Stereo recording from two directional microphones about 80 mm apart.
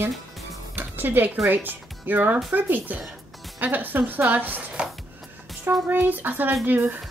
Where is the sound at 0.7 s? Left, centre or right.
Right.